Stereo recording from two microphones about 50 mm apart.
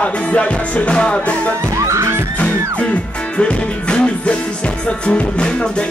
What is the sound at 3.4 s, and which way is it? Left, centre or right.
Music, centre.